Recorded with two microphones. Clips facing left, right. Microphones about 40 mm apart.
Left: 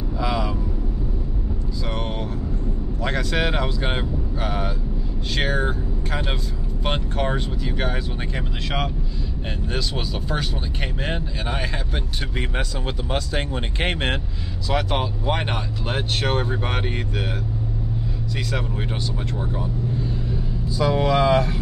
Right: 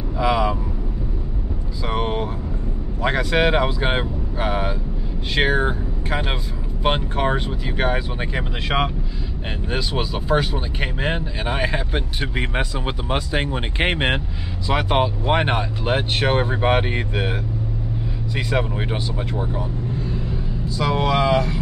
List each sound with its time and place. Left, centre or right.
0.2 s vehicle: centre
1.9 s vehicle: centre
3.0 s speech: centre
18.3 s speech: right
20.8 s speech: right